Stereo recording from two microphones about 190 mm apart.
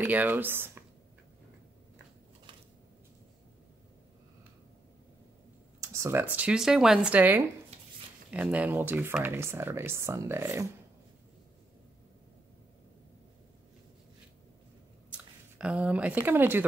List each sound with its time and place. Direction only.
0.0 s speech: 10° right (ahead or behind)
5.8 s speech: 15° right (ahead or behind)
7.7 s a sound: 35° right (ahead or behind)
8.3 s speech: 5° right (ahead or behind)
15.0 s speech: 5° right (ahead or behind)